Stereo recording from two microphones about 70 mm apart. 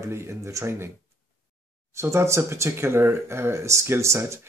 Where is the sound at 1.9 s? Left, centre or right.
Right.